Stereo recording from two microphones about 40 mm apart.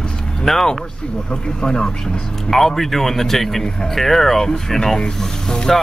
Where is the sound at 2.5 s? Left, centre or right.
Centre.